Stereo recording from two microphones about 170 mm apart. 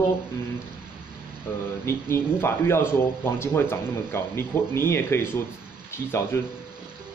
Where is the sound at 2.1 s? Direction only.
15° left (ahead or behind).